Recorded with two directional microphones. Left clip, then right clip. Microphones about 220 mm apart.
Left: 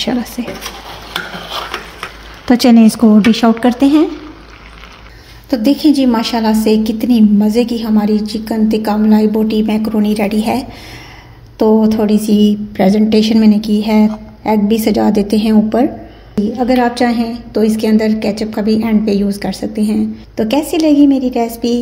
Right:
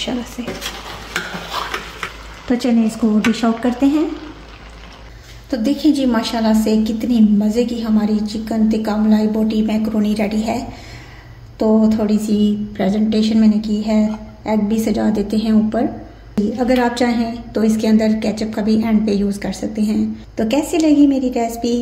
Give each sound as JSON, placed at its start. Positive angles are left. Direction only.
{"t": 0.4, "sound": "speech", "side_deg": 45}
{"t": 2.4, "sound": "speech", "side_deg": 50}
{"t": 3.3, "sound": "a woman's voice", "side_deg": 35}
{"t": 5.5, "sound": "a woman's voice", "side_deg": 35}
{"t": 16.5, "sound": "a woman's voice", "side_deg": 20}